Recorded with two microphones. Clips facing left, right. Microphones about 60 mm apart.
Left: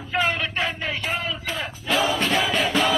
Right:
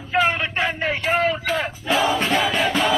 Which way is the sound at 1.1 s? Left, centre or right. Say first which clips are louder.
Right 8 dB; right.